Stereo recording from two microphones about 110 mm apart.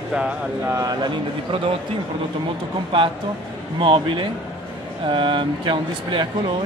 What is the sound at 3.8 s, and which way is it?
Speech, 50° right (ahead or behind).